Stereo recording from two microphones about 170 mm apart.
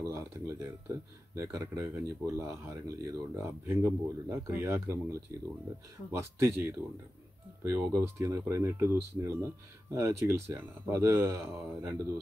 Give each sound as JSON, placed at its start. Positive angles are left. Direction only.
{"t": 0.0, "sound": "speech", "side_deg": -15}
{"t": 6.1, "sound": "speech", "side_deg": -15}